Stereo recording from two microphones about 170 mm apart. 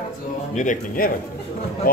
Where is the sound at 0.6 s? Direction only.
55° left (ahead or behind).